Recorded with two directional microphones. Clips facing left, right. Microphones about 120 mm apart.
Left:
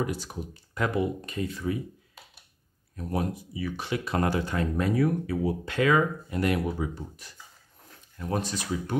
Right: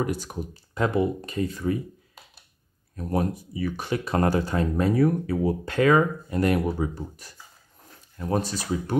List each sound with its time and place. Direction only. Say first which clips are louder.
0.0 s speech: right 3 dB; 50° right (ahead or behind)
0.7 s speech: right 4 dB; 30° right (ahead or behind)
3.0 s speech: right 4 dB; 45° right (ahead or behind)